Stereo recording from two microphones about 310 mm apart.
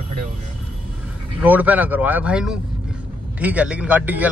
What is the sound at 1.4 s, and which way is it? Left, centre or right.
Speech, centre.